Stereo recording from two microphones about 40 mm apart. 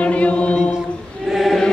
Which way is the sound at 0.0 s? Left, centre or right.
Left.